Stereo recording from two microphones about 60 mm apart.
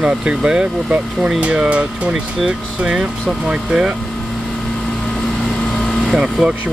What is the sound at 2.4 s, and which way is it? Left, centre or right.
Speech, centre.